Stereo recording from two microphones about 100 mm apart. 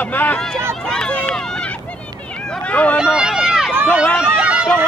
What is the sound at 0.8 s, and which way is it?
Run, 5° left (ahead or behind).